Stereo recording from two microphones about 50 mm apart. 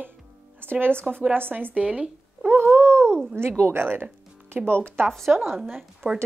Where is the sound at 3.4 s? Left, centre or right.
Right.